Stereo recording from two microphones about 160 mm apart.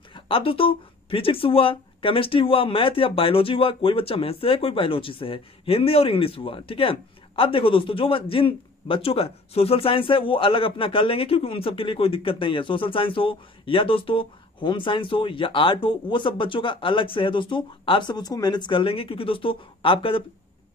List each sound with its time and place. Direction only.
0.1 s speech: 35° left (ahead or behind)